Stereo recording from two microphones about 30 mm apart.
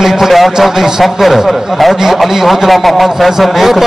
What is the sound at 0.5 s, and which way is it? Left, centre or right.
Speech, centre.